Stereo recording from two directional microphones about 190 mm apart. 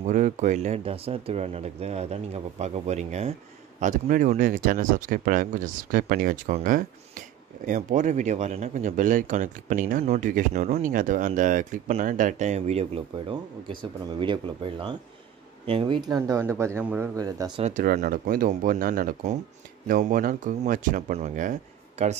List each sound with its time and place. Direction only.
0.0 s speech: 40° right (ahead or behind); by 17.6 s 20° right (ahead or behind)
17.6 s speech: 40° right (ahead or behind)